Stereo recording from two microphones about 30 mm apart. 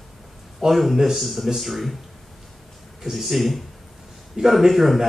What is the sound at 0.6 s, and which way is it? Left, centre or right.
Speech, centre.